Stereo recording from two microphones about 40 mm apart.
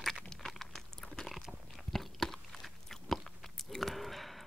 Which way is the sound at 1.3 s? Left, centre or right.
Centre.